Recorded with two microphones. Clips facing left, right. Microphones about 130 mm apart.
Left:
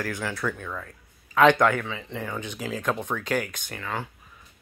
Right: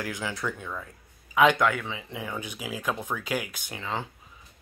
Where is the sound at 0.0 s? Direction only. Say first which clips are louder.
Left 2 dB; 15° right (ahead or behind).